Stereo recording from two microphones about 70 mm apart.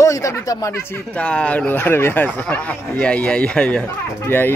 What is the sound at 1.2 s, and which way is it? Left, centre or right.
A man's voice, centre.